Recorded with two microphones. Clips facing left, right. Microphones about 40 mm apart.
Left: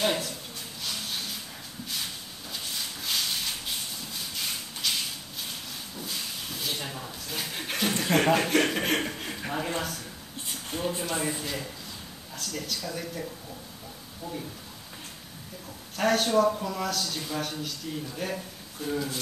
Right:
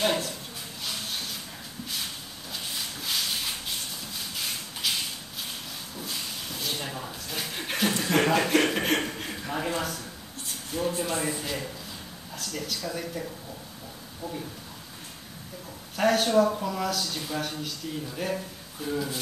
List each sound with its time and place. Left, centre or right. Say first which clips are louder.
0.0 s a sound: right 1 dB; centre
0.8 s music: even; centre
2.5 s a sound: right 1 dB; centre
5.9 s a sound: right 1 dB; centre
8.0 s chuckle: left 1 dB; centre
8.4 s speech: right 1 dB; centre
10.7 s speech: right 2 dB; left
11.1 s speech: right 1 dB; centre
16.0 s speech: right 1 dB; centre